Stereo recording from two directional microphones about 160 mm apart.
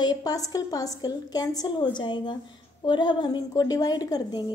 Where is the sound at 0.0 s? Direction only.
25° left (ahead or behind).